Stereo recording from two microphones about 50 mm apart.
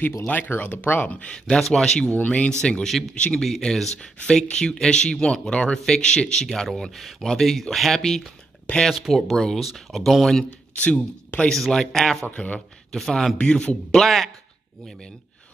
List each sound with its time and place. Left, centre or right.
0.3 s speech: left
1.5 s speech: centre
2.1 s a man's voice: left
2.9 s speech: centre
10.8 s a man's voice: left; by 13.4 s centre
13.4 s a man's voice: left
14.0 s speech: centre